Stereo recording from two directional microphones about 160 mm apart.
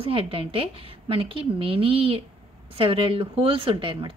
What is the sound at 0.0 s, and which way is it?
Speech, 35° right (ahead or behind).